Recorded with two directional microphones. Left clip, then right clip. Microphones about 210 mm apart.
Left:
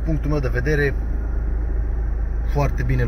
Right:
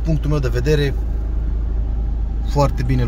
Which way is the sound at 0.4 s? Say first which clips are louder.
Right 2 dB; 20° right (ahead or behind).